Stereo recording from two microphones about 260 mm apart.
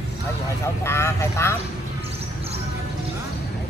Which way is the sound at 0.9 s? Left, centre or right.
Centre.